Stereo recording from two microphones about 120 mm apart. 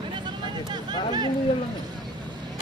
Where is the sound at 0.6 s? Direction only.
35° right (ahead or behind).